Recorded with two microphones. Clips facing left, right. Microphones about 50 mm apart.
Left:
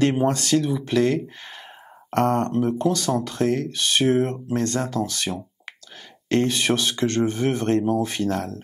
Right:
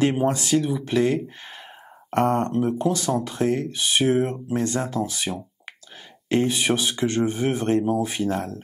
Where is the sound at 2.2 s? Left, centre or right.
Centre.